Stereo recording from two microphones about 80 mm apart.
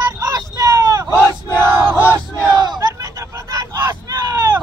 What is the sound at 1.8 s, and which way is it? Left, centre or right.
Battle cry, right.